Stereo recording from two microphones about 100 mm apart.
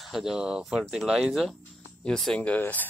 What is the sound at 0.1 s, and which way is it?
Speech, 5° right (ahead or behind).